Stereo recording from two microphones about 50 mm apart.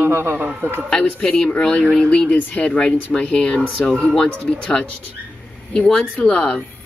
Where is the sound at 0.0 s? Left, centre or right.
Right.